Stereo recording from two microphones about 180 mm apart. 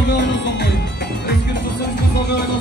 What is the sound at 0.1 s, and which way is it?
Music, 75° left (ahead or behind).